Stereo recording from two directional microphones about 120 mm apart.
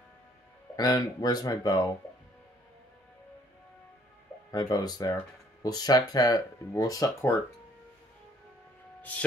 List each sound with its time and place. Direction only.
0.7 s speech: 35° left (ahead or behind)
4.5 s speech: 35° left (ahead or behind)